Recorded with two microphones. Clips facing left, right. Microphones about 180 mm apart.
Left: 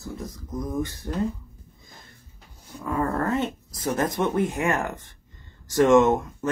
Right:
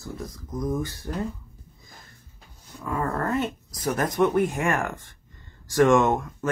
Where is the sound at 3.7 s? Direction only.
25° left (ahead or behind).